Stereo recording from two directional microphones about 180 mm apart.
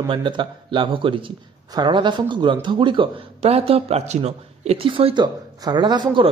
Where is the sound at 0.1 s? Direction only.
25° right (ahead or behind).